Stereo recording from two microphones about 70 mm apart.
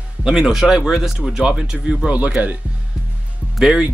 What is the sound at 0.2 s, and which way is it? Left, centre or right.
Speech, centre.